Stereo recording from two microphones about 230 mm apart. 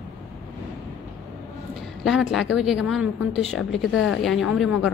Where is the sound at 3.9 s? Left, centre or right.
Left.